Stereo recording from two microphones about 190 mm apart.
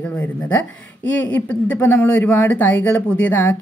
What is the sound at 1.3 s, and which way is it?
Speech, 10° left (ahead or behind).